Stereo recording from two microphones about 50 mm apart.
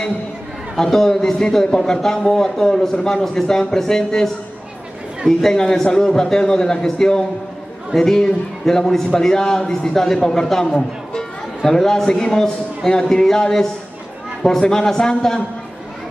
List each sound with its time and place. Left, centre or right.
0.7 s a man's voice: centre
5.4 s a man's voice: centre